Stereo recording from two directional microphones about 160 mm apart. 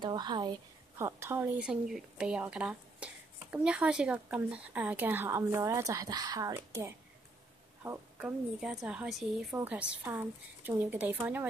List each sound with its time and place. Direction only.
0.0 s a woman's voice: 25° right (ahead or behind)
8.5 s a woman's voice: 5° right (ahead or behind)